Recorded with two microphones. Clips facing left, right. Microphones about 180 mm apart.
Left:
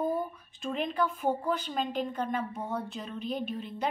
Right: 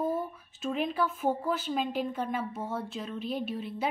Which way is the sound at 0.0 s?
5° right (ahead or behind).